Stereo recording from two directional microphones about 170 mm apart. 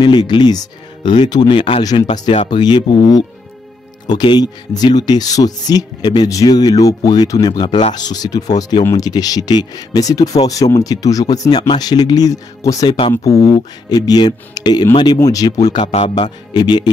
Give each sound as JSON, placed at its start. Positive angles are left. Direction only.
{"t": 0.0, "sound": "speech", "side_deg": 25}
{"t": 4.1, "sound": "speech", "side_deg": 25}
{"t": 15.8, "sound": "speech", "side_deg": 35}